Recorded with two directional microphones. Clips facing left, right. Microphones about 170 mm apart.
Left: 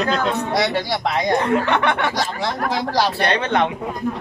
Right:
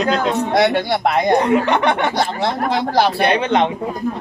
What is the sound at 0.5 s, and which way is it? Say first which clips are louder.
Speech: right 5 dB; 55° right (ahead or behind).